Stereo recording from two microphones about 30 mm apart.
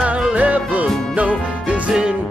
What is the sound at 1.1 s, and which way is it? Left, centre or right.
Music, right.